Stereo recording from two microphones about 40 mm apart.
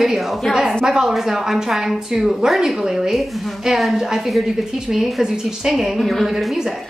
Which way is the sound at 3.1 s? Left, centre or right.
Centre.